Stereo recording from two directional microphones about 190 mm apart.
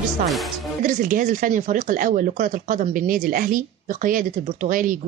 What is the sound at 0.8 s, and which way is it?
Speech, 45° right (ahead or behind).